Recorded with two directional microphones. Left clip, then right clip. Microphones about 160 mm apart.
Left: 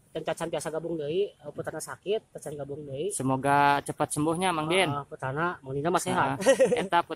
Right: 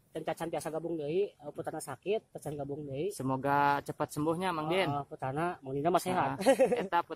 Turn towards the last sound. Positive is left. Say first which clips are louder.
# left 5 dB
turn(degrees=0)  # may be behind; listen again after turning